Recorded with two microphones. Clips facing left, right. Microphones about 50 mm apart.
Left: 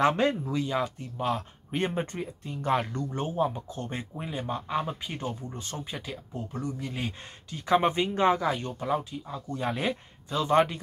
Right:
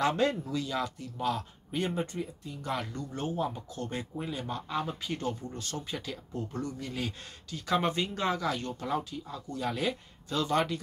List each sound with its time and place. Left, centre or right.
0.0 s speech: left
3.2 s speech: left